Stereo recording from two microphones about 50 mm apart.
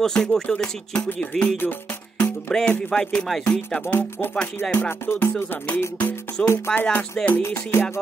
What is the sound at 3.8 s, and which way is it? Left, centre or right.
Music, left.